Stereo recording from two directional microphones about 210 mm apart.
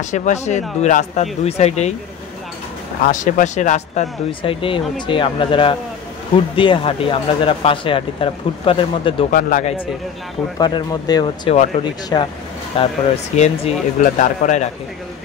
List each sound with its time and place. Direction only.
0.0 s speech: 35° left (ahead or behind)
3.1 s speech: 40° left (ahead or behind)
9.3 s speech: 35° left (ahead or behind)
10.6 s speech: 20° left (ahead or behind); by 14.7 s 35° left (ahead or behind)